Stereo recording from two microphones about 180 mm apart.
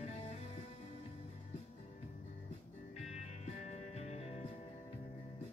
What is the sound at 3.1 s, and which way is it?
Music, 40° left (ahead or behind).